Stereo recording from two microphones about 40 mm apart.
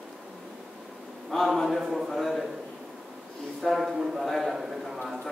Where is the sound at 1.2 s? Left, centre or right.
Centre.